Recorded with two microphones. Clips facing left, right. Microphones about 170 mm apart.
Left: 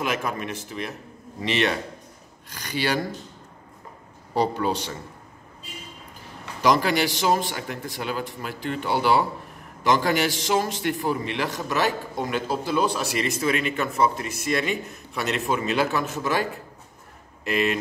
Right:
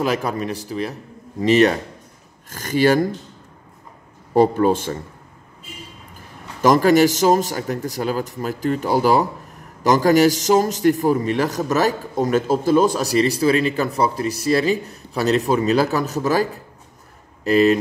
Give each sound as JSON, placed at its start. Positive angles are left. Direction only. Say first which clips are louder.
{"t": 0.0, "sound": "a man's voice", "louder": "right 6 dB", "side_deg": -35}
{"t": 4.3, "sound": "speech", "louder": "right 8 dB", "side_deg": -50}
{"t": 6.6, "sound": "a man's voice", "louder": "right 7 dB", "side_deg": -45}